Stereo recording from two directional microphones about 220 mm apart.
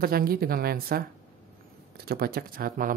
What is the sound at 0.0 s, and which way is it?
Speech, 40° right (ahead or behind).